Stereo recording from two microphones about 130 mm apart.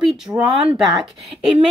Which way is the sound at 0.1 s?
5° right (ahead or behind).